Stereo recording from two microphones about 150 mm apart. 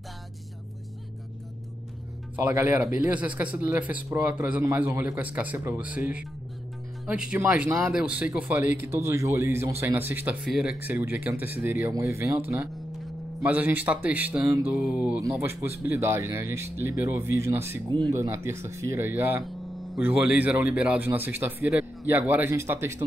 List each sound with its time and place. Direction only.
2.3 s a man's voice: 15° right (ahead or behind)
7.1 s mantra: 5° right (ahead or behind)
7.3 s a man's voice: 10° right (ahead or behind)
14.7 s mantra: 5° right (ahead or behind)
15.8 s a man's voice: 15° right (ahead or behind)